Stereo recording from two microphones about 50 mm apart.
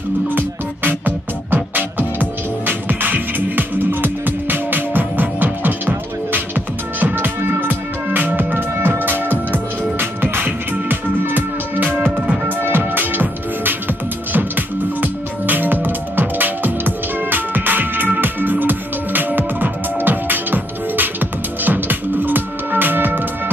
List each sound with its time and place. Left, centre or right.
0.3 s music: right